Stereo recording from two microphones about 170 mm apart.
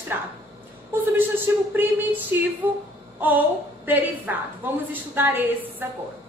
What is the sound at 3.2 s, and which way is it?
A woman's voice, 10° right (ahead or behind).